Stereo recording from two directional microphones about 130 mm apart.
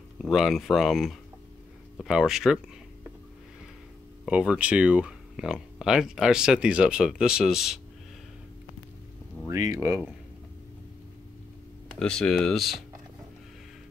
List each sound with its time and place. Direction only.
0.2 s speech: centre (ahead or behind)
4.3 s speech: 10° right (ahead or behind)
9.5 s speech: 25° right (ahead or behind)
11.9 s speech: 5° left (ahead or behind)